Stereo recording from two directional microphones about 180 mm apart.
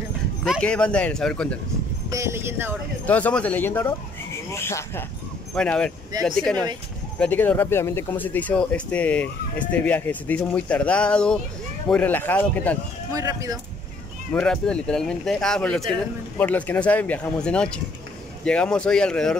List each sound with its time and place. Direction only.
0.4 s speech: 5° left (ahead or behind)
2.0 s speech: 15° right (ahead or behind)
3.1 s speech: 10° left (ahead or behind)
13.1 s speech: 20° right (ahead or behind)
14.3 s speech: 5° left (ahead or behind)